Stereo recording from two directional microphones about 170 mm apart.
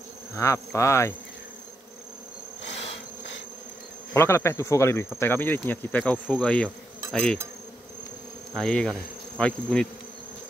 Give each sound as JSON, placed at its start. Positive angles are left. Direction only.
{"t": 0.4, "sound": "insect", "side_deg": 20}
{"t": 4.1, "sound": "insect", "side_deg": 15}
{"t": 8.5, "sound": "insect", "side_deg": 5}